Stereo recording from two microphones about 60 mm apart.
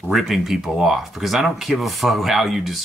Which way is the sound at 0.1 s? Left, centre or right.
Centre.